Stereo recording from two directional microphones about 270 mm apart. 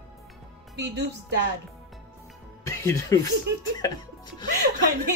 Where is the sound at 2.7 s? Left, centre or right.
Centre.